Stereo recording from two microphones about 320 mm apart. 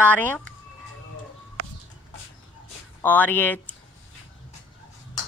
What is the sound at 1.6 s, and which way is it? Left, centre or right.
Chicken, right.